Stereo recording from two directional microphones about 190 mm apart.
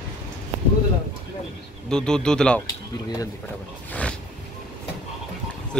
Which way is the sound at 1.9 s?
5° left (ahead or behind).